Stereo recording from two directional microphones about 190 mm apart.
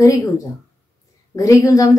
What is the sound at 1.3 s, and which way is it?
Speech, 15° left (ahead or behind).